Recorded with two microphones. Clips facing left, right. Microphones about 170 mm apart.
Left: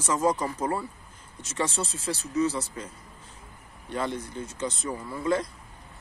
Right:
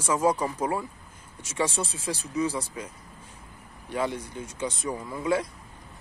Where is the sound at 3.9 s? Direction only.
10° right (ahead or behind).